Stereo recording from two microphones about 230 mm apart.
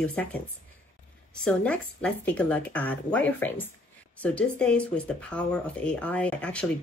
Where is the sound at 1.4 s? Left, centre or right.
Centre.